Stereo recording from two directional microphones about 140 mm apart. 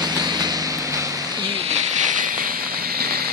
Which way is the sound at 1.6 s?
60° right (ahead or behind).